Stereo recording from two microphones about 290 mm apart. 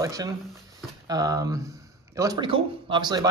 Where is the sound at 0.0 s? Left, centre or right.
Centre.